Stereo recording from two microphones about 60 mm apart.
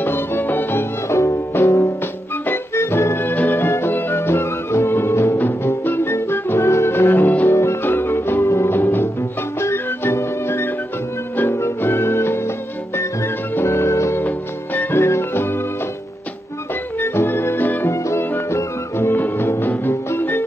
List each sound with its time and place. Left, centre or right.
0.0 s music: left
2.4 s music: left
7.5 s music: left
8.4 s music: left
11.8 s music: left
14.2 s music: left
17.0 s organ: left
17.8 s music: left